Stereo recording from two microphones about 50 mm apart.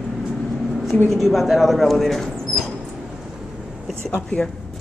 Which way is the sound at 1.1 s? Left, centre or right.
Centre.